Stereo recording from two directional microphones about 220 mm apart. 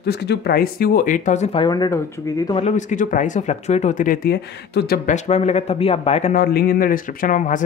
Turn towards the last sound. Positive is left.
turn(degrees=35)  # may be behind; listen again after turning